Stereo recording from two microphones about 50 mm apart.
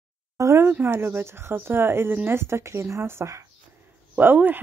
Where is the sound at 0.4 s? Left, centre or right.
Right.